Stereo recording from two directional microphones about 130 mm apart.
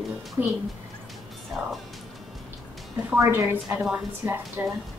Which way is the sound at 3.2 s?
20° right (ahead or behind).